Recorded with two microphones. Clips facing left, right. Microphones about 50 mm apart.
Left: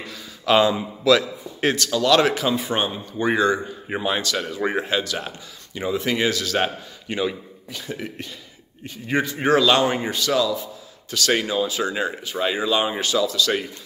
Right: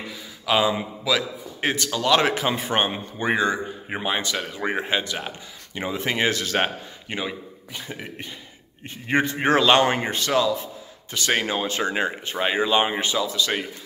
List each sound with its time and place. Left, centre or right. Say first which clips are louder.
0.5 s speech: left 3 dB; centre
1.6 s a man's voice: left 3 dB; centre; by 2.9 s right
3.2 s a man's voice: left 3 dB; right
3.9 s a man's voice: left 2 dB; centre; by 6.7 s right
7.1 s a man's voice: left 5 dB; centre
11.6 s a man's voice: even; right